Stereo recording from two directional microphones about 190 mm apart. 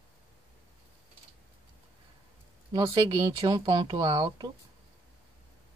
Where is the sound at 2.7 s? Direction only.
15° right (ahead or behind).